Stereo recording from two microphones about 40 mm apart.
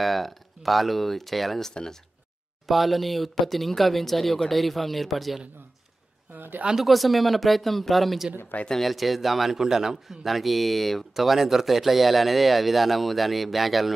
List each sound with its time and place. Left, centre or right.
0.0 s a man's voice: centre
1.7 s speech: centre
2.7 s a man's voice: centre
6.8 s a man's voice: centre
8.5 s speech: left
8.8 s a man's voice: centre